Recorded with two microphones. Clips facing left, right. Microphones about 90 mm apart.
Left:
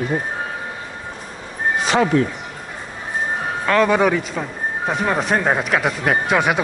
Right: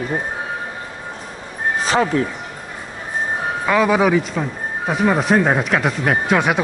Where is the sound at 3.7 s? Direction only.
5° right (ahead or behind).